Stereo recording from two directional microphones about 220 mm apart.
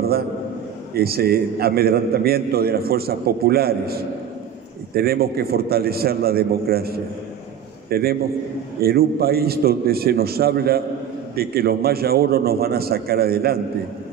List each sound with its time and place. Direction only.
0.9 s a man's voice: 45° right (ahead or behind)